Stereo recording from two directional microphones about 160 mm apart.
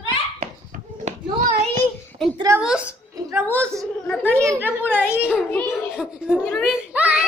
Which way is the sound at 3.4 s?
10° left (ahead or behind).